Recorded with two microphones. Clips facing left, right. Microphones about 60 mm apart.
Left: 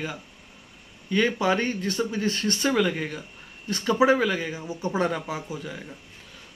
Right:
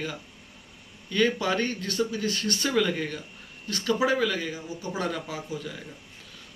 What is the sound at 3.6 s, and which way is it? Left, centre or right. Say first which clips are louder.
Speech: left 4 dB; left.